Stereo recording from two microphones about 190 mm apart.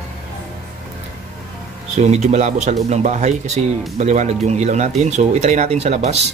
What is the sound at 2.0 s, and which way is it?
Speech, 35° right (ahead or behind).